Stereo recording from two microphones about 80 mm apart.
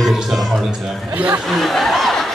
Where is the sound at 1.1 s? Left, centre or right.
Centre.